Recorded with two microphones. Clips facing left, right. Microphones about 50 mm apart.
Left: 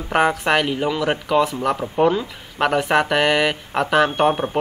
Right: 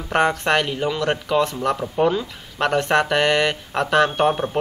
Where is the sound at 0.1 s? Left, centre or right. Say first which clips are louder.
Left 1 dB; centre.